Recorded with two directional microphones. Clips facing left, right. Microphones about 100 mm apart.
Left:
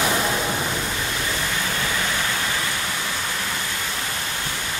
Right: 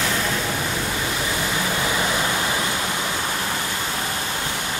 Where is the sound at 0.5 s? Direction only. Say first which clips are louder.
Even; 5° left (ahead or behind).